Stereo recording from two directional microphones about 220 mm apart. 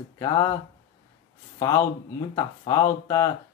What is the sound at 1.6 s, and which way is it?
Speech, 15° left (ahead or behind).